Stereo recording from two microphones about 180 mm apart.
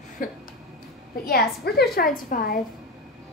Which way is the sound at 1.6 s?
60° left (ahead or behind).